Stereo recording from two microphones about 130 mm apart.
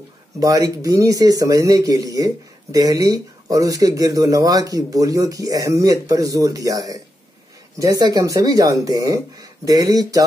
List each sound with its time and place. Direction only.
0.4 s speech: 25° right (ahead or behind)